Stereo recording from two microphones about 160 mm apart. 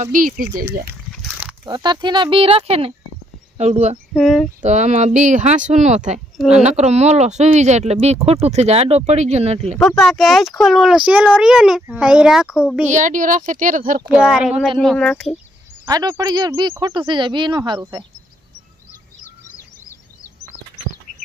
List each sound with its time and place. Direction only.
0.0 s speech: 55° right (ahead or behind)
1.7 s speech: 25° right (ahead or behind)
4.1 s a child's voice: centre (ahead or behind)
4.6 s speech: 45° right (ahead or behind)
6.3 s a woman's voice: centre (ahead or behind)
6.6 s speech: 45° right (ahead or behind)
9.8 s a child's voice: centre (ahead or behind)
12.8 s speech: 50° right (ahead or behind)
14.0 s a child's voice: 5° right (ahead or behind)
15.8 s speech: 25° right (ahead or behind)